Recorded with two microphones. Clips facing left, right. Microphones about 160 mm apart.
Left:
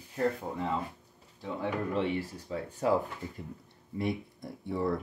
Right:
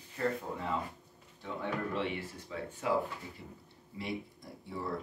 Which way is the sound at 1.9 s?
35° left (ahead or behind).